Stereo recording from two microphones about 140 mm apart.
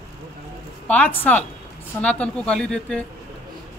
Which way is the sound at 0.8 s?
10° left (ahead or behind).